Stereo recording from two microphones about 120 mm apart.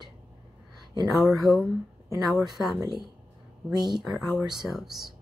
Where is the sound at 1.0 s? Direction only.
Centre (ahead or behind).